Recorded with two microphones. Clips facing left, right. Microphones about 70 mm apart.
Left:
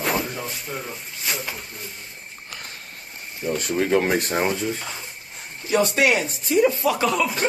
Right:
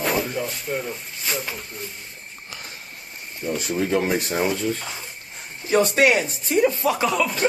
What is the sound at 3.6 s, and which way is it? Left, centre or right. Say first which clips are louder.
Speech: left 2 dB; left.